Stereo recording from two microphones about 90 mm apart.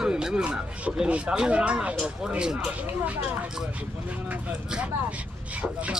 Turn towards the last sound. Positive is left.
turn(degrees=-15)  # may be behind; listen again after turning